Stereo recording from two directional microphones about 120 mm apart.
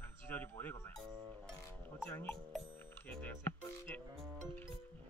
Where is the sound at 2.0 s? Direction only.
15° left (ahead or behind).